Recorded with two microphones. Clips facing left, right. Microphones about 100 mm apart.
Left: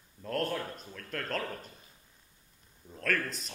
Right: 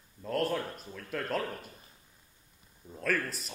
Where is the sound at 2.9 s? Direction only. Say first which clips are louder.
Right 1 dB; 5° right (ahead or behind).